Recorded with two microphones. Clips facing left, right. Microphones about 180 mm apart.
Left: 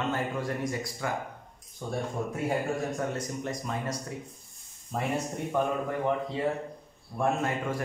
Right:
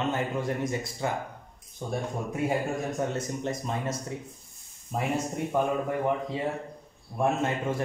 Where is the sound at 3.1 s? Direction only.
25° right (ahead or behind).